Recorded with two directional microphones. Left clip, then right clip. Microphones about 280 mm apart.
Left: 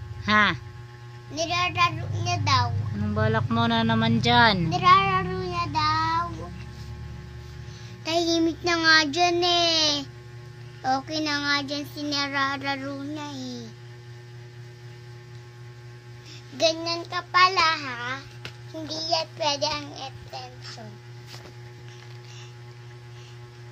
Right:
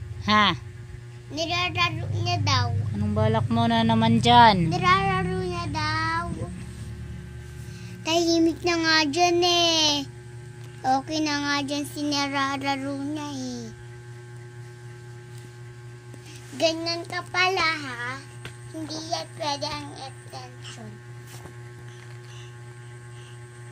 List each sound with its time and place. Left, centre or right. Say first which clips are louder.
0.2 s speech: even; centre
1.3 s child singing: left 1 dB; centre
3.0 s child singing: right 1 dB; centre
4.6 s child singing: left 3 dB; centre
8.0 s child singing: right 2 dB; centre
16.5 s a child's voice: left 1 dB; centre
18.9 s child singing: left 5 dB; left